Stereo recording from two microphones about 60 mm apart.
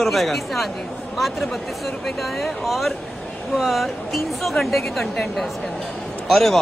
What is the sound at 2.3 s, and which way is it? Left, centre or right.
A man's voice, centre.